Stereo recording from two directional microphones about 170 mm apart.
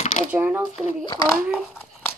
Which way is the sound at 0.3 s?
10° right (ahead or behind).